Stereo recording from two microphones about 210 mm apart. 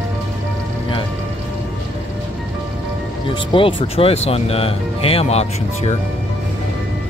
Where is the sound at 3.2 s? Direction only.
25° left (ahead or behind).